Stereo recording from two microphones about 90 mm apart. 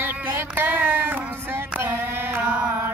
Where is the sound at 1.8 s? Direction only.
25° right (ahead or behind).